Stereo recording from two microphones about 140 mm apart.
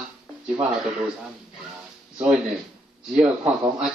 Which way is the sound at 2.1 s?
5° right (ahead or behind).